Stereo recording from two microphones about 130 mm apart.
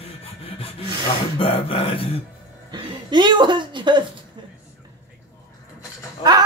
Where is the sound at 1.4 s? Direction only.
45° left (ahead or behind).